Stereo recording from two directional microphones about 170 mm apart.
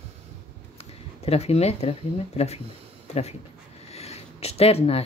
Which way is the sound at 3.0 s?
40° left (ahead or behind).